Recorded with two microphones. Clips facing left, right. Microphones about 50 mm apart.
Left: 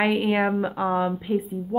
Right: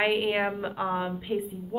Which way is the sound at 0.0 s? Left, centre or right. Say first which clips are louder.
Left 4 dB; centre.